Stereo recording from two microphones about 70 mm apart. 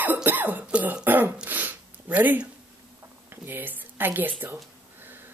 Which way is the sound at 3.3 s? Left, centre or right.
Right.